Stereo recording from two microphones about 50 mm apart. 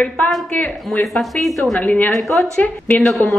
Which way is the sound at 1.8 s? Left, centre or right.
Left.